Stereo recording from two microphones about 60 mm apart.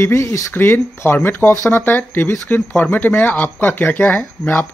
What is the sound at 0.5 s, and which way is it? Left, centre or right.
Speech, left.